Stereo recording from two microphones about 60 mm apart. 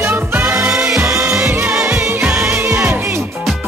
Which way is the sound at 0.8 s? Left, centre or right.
Centre.